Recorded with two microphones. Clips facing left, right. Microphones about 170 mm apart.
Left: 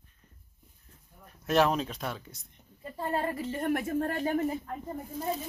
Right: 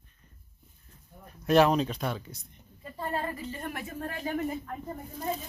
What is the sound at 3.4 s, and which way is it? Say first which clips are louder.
Speech: left 8 dB; 50° left (ahead or behind).